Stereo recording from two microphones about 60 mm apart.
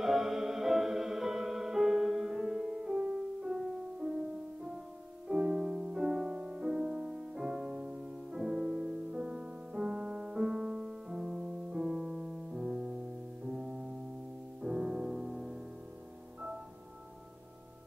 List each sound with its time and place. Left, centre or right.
0.0 s music: centre
13.5 s piano: centre
14.6 s music: centre